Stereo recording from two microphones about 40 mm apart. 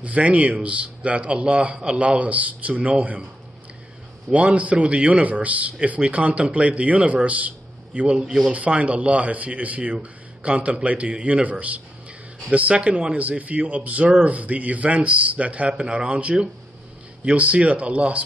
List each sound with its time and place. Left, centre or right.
0.0 s a man's voice: right
4.3 s a man's voice: right
8.1 s a man's voice: right